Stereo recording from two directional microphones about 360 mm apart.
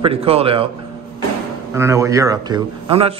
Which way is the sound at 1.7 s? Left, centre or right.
Centre.